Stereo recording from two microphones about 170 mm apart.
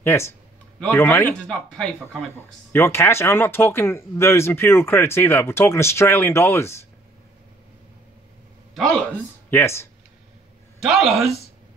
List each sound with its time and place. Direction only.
0.0 s speech: 15° left (ahead or behind)
8.7 s speech: 5° left (ahead or behind)
10.8 s speech: centre (ahead or behind)